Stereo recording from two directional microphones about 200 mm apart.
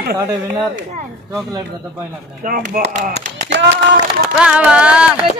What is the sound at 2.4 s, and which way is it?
Speech, 45° right (ahead or behind).